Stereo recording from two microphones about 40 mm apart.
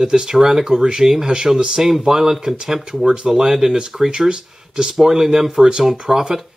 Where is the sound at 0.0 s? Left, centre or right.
Centre.